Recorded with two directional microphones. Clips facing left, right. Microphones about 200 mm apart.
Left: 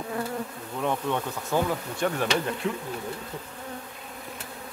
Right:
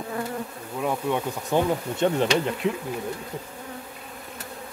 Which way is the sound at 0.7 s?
10° right (ahead or behind).